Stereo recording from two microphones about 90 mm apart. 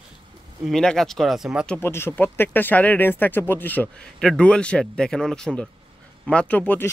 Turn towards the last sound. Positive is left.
turn(degrees=20)  # may be behind; listen again after turning